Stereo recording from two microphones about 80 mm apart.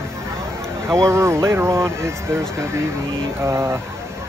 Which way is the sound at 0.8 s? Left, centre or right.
Right.